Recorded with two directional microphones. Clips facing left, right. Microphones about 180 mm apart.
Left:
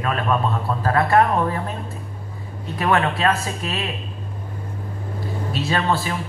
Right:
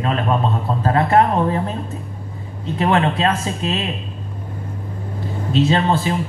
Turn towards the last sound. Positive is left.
turn(degrees=-20)  # may be behind; listen again after turning